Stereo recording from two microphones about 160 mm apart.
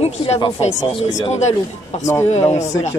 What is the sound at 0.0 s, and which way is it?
Speech, 40° left (ahead or behind).